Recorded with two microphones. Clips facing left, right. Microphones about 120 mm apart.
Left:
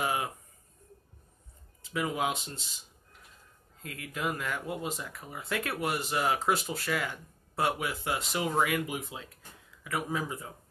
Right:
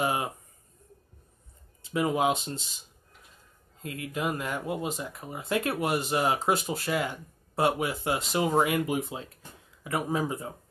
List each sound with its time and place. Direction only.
0.0 s speech: 25° right (ahead or behind)
1.9 s speech: 25° right (ahead or behind)
3.8 s speech: 20° right (ahead or behind)